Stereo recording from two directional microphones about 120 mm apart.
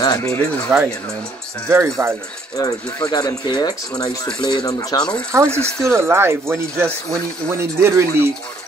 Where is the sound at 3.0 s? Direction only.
35° left (ahead or behind).